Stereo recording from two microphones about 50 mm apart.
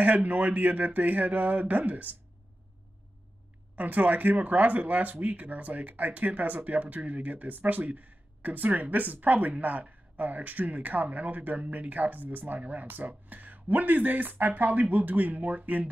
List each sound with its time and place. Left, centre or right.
0.0 s speech: right
3.7 s speech: right